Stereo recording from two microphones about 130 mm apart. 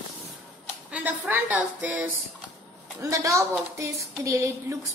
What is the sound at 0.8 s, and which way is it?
A woman's voice, 10° right (ahead or behind).